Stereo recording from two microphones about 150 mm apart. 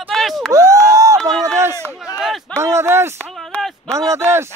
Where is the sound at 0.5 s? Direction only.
25° right (ahead or behind).